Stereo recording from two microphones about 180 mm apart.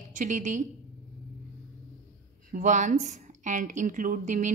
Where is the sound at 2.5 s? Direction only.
45° right (ahead or behind).